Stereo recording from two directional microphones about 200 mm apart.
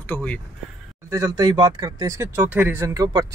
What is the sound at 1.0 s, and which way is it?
Speech, 15° right (ahead or behind).